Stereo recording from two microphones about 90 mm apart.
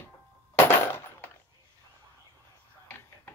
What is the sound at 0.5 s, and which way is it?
Coin, 25° left (ahead or behind).